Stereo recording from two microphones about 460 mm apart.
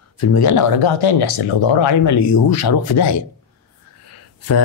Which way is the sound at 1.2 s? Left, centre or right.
Left.